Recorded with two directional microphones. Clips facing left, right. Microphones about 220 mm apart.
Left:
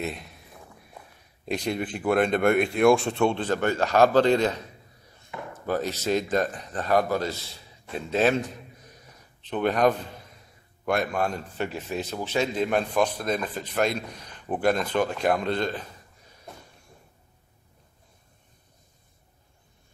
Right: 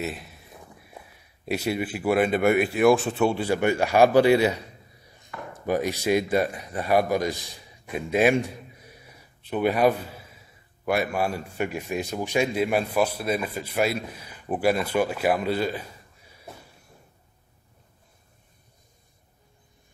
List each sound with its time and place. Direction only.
0.0 s speech: 5° right (ahead or behind)
1.4 s speech: 5° right (ahead or behind)
5.3 s chop: 20° left (ahead or behind)
5.7 s a man's voice: 15° right (ahead or behind)